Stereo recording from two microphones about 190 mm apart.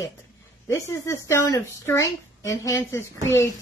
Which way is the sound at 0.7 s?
15° left (ahead or behind).